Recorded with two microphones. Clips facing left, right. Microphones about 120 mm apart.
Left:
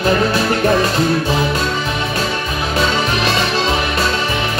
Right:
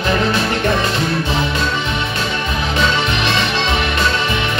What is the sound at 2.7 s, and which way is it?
Music, 40° left (ahead or behind).